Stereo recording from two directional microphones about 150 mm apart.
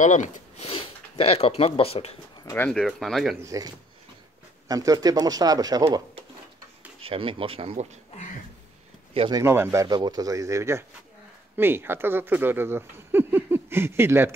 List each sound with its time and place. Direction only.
0.0 s speech: 55° left (ahead or behind)
2.5 s speech: 10° left (ahead or behind)
3.4 s speech: 25° right (ahead or behind)
7.0 s speech: 35° right (ahead or behind)
9.3 s speech: 20° right (ahead or behind)
9.8 s speech: 25° right (ahead or behind)